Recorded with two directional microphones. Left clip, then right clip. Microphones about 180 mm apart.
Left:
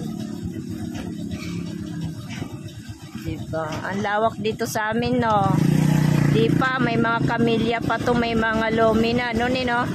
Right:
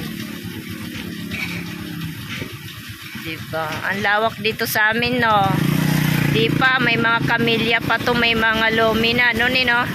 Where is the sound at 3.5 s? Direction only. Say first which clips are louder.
Right 4 dB; 10° left (ahead or behind).